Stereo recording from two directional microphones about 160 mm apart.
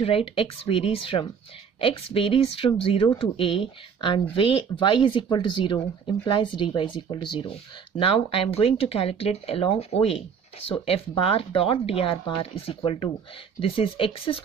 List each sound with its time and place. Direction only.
0.0 s speech: 35° left (ahead or behind)